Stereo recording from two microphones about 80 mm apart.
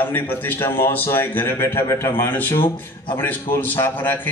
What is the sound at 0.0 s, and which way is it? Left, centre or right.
A man's voice, left.